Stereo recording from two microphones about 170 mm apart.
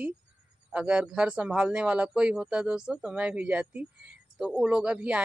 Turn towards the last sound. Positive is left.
turn(degrees=-5)  # may be behind; listen again after turning